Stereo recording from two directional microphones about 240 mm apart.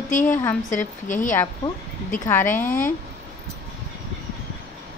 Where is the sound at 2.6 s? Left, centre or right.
Left.